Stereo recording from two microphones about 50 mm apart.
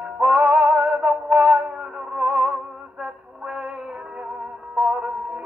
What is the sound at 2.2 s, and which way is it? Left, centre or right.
Music, centre.